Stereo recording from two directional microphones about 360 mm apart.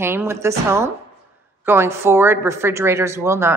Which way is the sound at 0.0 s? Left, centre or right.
Centre.